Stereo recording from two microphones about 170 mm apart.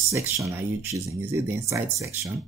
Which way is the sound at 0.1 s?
15° right (ahead or behind).